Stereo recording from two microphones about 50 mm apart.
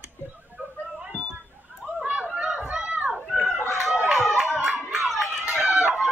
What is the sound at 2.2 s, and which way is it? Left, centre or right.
Chatter, right.